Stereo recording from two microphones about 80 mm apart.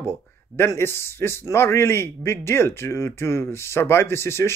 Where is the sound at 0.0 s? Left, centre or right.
Left.